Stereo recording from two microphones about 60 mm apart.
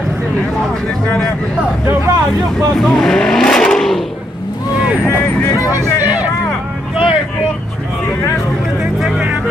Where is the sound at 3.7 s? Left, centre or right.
Centre.